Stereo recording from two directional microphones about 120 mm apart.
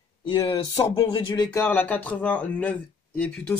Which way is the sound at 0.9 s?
35° left (ahead or behind).